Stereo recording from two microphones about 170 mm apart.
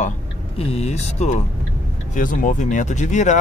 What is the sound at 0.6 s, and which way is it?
Speech, 35° left (ahead or behind).